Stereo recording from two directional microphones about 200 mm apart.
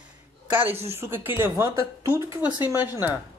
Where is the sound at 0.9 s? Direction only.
10° right (ahead or behind).